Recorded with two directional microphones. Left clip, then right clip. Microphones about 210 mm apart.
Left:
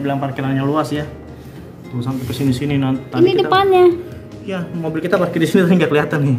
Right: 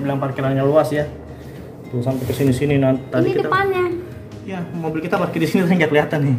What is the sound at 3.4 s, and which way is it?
Speech, 40° left (ahead or behind).